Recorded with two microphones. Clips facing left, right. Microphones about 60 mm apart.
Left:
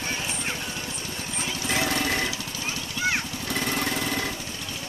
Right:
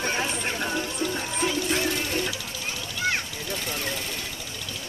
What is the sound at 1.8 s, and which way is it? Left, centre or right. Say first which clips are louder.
Jackhammer: left 1 dB; left.